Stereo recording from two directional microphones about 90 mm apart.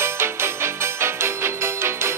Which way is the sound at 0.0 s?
30° right (ahead or behind).